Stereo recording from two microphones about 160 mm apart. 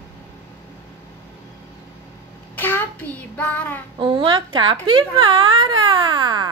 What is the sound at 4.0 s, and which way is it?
A woman's voice, 30° right (ahead or behind).